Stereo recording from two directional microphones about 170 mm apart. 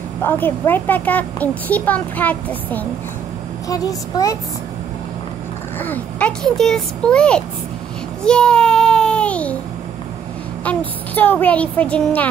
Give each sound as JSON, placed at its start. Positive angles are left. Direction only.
{"t": 0.2, "sound": "a child's voice", "side_deg": 10}
{"t": 3.6, "sound": "speech", "side_deg": 20}
{"t": 5.8, "sound": "speech", "side_deg": 10}
{"t": 8.2, "sound": "child singing", "side_deg": 5}
{"t": 10.6, "sound": "a child's voice", "side_deg": 10}